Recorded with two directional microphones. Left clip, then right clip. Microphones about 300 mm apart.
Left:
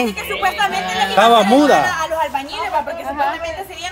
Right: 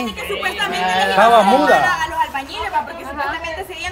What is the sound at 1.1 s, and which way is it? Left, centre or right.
Speech, left.